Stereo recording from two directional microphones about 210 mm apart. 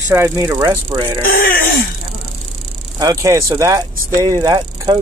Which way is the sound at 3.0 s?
20° right (ahead or behind).